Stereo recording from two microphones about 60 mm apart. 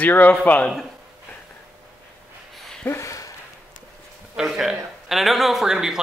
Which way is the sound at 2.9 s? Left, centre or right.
Left.